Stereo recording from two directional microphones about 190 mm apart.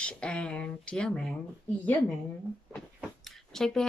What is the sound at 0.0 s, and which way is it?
Speech, 5° left (ahead or behind).